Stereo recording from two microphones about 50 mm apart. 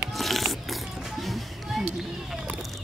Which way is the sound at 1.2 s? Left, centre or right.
Centre.